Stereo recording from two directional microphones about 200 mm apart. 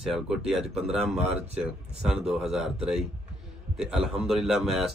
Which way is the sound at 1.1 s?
30° right (ahead or behind).